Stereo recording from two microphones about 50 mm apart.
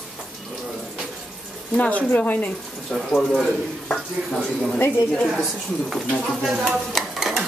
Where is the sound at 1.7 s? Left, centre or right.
Left.